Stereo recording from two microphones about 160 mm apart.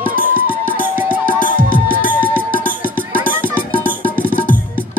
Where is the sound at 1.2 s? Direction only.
60° right (ahead or behind).